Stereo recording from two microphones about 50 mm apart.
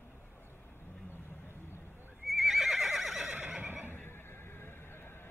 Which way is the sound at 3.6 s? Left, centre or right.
Right.